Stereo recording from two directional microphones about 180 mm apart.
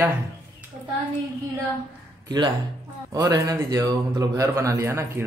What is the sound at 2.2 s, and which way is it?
Speech, 25° right (ahead or behind).